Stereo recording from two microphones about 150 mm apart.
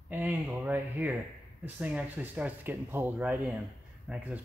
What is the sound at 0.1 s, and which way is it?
Speech, 10° right (ahead or behind).